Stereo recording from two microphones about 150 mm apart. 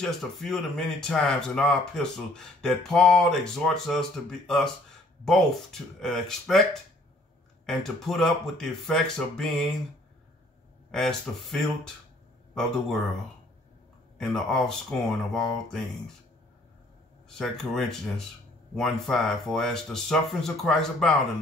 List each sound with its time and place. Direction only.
0.0 s speech: centre (ahead or behind)
10.9 s speech: 5° left (ahead or behind)
14.1 s speech: centre (ahead or behind)
17.4 s speech: 5° left (ahead or behind)